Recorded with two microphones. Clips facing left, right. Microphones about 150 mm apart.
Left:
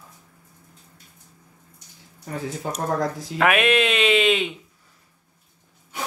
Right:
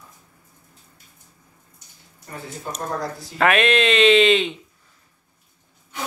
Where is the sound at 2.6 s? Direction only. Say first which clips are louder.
Left 3 dB; 90° left.